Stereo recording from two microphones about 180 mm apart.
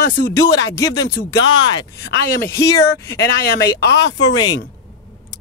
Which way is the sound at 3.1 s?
60° left (ahead or behind).